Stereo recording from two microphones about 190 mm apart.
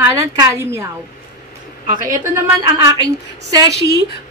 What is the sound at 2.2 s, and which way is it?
A woman's voice, 15° right (ahead or behind).